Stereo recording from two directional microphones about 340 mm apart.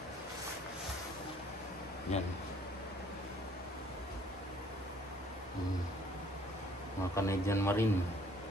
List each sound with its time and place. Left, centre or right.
2.1 s speech: centre
7.2 s a man's voice: centre